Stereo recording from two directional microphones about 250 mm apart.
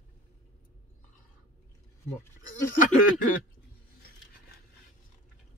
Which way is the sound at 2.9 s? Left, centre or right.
Left.